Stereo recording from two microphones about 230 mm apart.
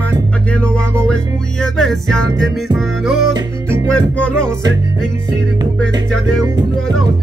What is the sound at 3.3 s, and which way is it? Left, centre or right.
Music, centre.